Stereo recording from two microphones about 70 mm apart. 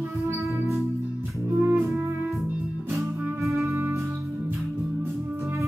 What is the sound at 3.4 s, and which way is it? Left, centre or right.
Music, right.